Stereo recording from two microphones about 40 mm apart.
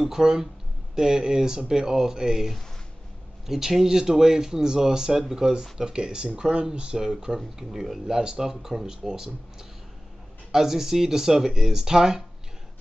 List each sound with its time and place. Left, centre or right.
0.0 s speech: centre